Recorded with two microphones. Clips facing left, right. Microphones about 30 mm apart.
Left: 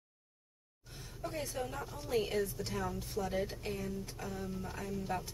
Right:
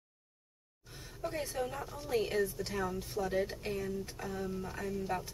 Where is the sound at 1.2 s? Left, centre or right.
Centre.